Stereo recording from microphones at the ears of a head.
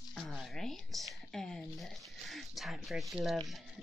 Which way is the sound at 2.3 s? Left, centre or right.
Centre.